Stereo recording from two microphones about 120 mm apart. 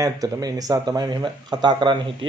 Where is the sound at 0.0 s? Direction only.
30° right (ahead or behind).